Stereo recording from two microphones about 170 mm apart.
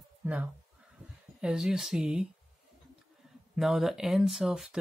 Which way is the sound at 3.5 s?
Centre (ahead or behind).